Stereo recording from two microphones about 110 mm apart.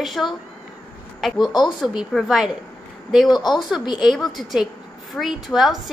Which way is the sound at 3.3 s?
40° left (ahead or behind).